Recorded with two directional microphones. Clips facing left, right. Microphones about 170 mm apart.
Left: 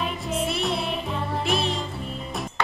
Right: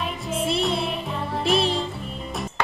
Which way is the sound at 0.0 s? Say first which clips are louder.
Even; centre (ahead or behind).